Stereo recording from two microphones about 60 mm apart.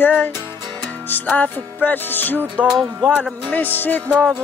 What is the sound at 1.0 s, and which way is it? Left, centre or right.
Music, left.